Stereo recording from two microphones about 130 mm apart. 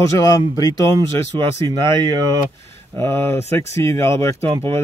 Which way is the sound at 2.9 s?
20° left (ahead or behind).